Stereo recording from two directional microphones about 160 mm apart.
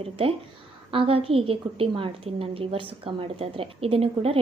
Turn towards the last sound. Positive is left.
turn(degrees=-35)  # may be behind; listen again after turning